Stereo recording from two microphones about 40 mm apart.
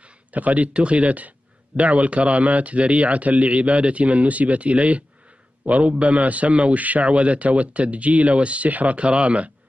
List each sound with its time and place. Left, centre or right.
0.3 s a man's voice: right